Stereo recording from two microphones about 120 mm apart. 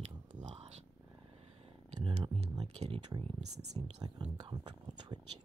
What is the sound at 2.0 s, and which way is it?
Speech, 50° right (ahead or behind).